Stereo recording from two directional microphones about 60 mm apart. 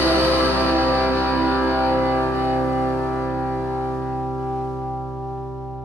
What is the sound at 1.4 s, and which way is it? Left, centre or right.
Music, right.